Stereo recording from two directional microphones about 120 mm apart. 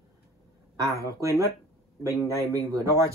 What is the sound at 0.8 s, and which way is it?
Speech, 25° right (ahead or behind).